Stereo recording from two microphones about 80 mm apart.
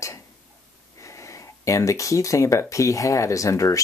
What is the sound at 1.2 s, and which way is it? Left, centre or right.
Speech, left.